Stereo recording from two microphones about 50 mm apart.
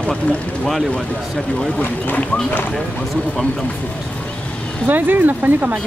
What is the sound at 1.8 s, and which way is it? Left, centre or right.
Speech, left.